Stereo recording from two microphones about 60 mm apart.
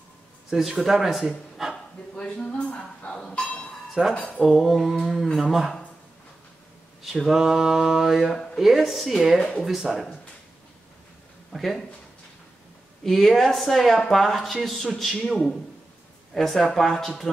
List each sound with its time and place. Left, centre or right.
0.5 s speech: centre
1.6 s dog: centre
2.1 s speech: centre
4.1 s a sound: left
4.4 s speech: centre
7.0 s speech: centre
11.5 s speech: centre
13.0 s speech: centre